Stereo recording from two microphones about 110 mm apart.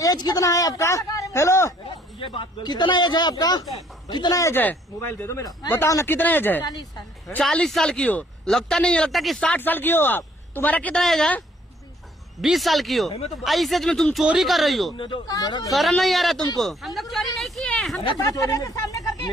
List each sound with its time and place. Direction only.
0.0 s speech: 35° left (ahead or behind)
1.9 s a sound: 55° left (ahead or behind)
2.6 s speech: 40° left (ahead or behind)
4.4 s speech: 20° left (ahead or behind)
7.4 s a man's voice: 5° left (ahead or behind)
9.5 s a man's voice: 15° left (ahead or behind)
11.0 s speech: 5° left (ahead or behind)
12.4 s speech: centre (ahead or behind)
15.2 s speech: 35° left (ahead or behind)
15.7 s speech: centre (ahead or behind)
18.2 s speech: 30° left (ahead or behind)